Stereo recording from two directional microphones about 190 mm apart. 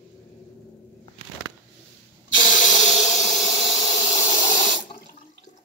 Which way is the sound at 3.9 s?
35° left (ahead or behind).